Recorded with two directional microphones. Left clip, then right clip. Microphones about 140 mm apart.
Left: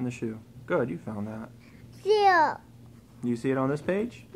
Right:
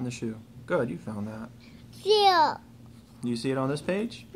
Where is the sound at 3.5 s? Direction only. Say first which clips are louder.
Left 1 dB; 10° left (ahead or behind).